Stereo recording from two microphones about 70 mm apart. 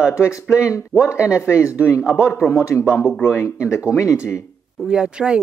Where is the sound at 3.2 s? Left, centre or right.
Left.